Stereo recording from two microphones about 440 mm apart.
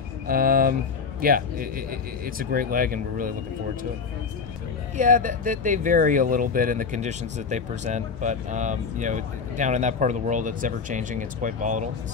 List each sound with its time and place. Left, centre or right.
0.3 s speech: centre
4.9 s speech: centre